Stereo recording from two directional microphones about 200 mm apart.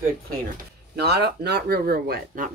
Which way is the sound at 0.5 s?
55° right (ahead or behind).